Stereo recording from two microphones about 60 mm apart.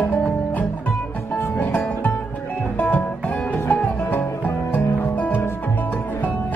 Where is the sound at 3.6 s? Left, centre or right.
Left.